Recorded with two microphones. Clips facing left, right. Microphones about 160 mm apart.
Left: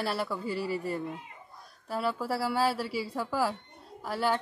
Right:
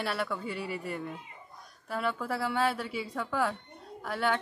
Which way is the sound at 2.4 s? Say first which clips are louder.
Left 1 dB; 5° left (ahead or behind).